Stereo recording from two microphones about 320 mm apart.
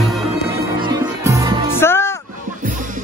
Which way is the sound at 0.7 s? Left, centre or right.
Centre.